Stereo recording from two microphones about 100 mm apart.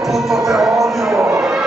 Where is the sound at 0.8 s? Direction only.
25° right (ahead or behind).